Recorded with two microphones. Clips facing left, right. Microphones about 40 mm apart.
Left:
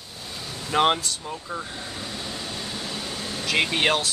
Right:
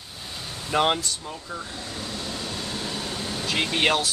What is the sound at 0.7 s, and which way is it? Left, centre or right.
Speech, centre.